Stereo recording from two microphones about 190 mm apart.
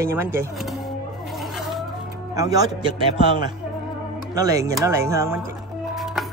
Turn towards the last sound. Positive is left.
turn(degrees=0)  # may be behind; listen again after turning